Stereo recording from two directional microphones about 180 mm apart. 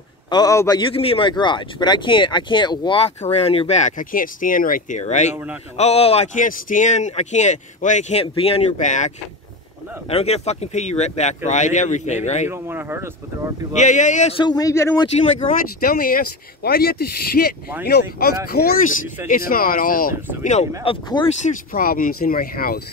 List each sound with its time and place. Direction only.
0.3 s speech: 20° left (ahead or behind)
3.2 s speech: 35° left (ahead or behind)
5.3 s speech: 10° right (ahead or behind)
5.8 s speech: 35° left (ahead or behind)
12.4 s speech: 10° right (ahead or behind)
13.7 s speech: 40° left (ahead or behind)
14.4 s speech: 20° left (ahead or behind)
15.8 s speech: 55° left (ahead or behind)
20.8 s speech: 30° left (ahead or behind)
21.4 s speech: 50° left (ahead or behind)